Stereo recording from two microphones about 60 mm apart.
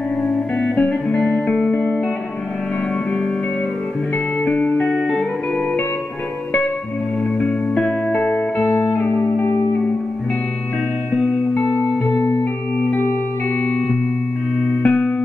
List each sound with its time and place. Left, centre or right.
0.3 s music: left
4.6 s music: left
4.8 s music: centre
8.6 s music: left
12.2 s music: left
14.8 s music: left